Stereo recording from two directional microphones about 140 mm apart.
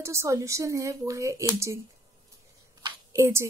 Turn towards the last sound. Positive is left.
turn(degrees=-20)  # may be behind; listen again after turning